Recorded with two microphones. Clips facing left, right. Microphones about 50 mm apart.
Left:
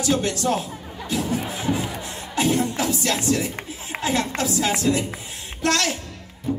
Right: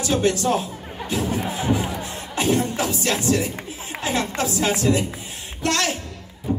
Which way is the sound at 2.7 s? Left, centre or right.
Right.